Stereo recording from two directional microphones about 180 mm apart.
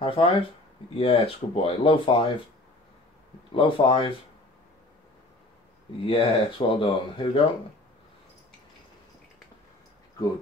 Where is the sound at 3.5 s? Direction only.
30° left (ahead or behind).